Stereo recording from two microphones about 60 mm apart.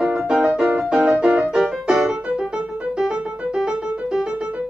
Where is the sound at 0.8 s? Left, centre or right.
Centre.